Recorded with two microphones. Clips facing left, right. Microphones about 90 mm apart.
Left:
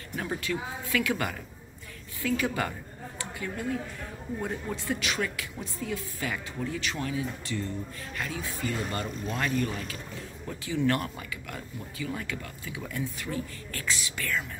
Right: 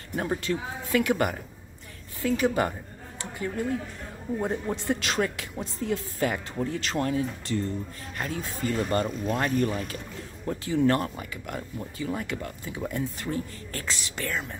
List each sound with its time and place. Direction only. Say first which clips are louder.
0.1 s a woman's voice: right 4 dB; 35° right (ahead or behind)
4.4 s speech: right 5 dB; 30° right (ahead or behind)